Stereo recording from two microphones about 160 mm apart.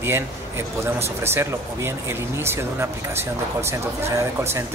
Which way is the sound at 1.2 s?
15° right (ahead or behind).